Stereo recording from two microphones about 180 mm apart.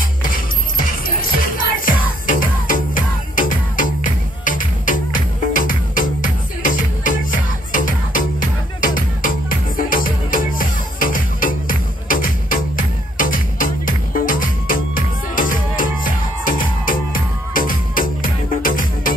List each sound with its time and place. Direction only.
0.2 s music: 50° left (ahead or behind)